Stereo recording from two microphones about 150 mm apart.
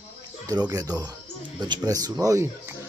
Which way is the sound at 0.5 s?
25° right (ahead or behind).